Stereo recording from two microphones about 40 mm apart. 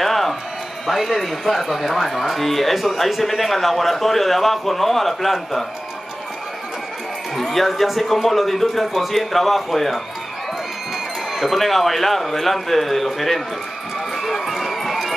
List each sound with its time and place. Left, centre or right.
0.0 s music: centre
0.8 s speech: centre
7.3 s speech: centre
11.3 s speech: centre
14.1 s run: centre